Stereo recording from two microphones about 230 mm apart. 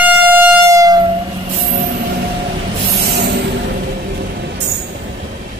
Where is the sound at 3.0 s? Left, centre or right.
Right.